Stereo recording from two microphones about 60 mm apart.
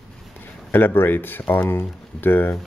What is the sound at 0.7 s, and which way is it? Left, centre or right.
Speech, left.